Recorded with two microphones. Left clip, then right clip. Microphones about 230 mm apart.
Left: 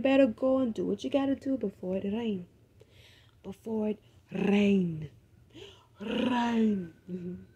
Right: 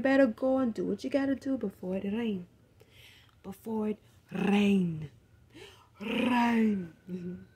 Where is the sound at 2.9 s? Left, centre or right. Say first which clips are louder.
Right 5 dB; right.